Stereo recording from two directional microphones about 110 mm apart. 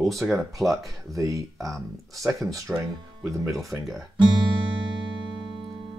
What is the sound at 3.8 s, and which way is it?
Speech, centre (ahead or behind).